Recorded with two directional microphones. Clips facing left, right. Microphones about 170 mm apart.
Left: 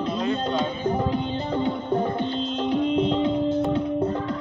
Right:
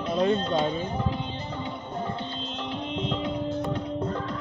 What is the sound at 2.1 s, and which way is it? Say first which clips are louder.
Music: left 8 dB; 50° left (ahead or behind).